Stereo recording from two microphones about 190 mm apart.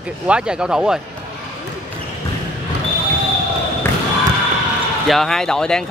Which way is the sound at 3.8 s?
15° left (ahead or behind).